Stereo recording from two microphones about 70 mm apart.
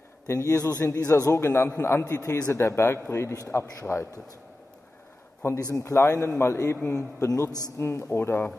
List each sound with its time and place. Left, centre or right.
0.3 s a man's voice: left
5.4 s a man's voice: left
6.9 s a man's voice: left
7.8 s a man's voice: left